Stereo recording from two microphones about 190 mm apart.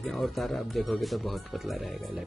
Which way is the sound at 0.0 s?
Centre (ahead or behind).